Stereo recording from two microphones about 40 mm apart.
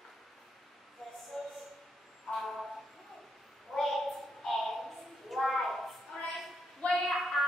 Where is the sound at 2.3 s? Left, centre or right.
Centre.